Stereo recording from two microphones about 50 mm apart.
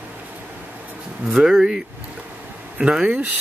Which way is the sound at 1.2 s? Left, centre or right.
Centre.